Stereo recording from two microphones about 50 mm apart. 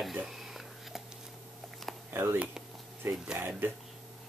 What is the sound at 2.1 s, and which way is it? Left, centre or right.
Speech, right.